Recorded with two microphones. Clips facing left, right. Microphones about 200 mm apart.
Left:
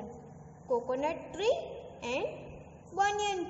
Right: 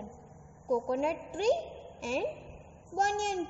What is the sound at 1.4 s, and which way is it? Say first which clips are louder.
A child's voice: right 1 dB; 40° right (ahead or behind).